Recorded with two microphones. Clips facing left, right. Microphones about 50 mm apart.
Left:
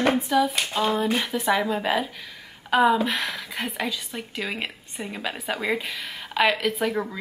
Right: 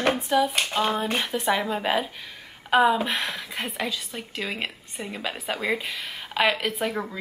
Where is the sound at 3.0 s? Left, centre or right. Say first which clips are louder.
Left 1 dB; right.